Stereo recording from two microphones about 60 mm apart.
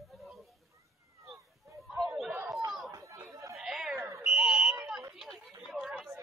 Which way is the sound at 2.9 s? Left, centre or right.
Right.